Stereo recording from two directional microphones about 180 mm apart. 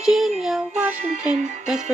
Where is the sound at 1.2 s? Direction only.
45° right (ahead or behind).